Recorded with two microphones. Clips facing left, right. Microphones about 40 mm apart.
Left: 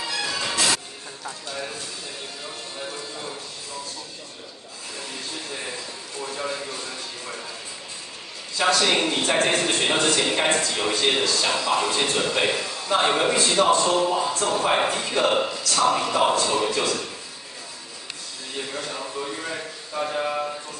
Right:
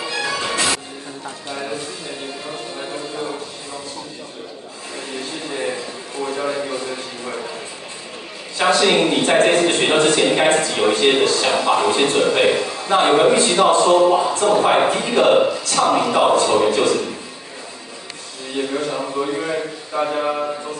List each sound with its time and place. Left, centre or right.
0.0 s music: right
6.2 s a sound: right
8.5 s a man's voice: right
18.8 s speech: right